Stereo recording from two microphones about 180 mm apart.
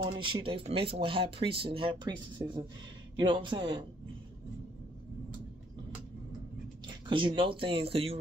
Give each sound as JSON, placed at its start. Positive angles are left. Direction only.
{"t": 0.0, "sound": "speech", "side_deg": -25}
{"t": 7.1, "sound": "speech", "side_deg": -25}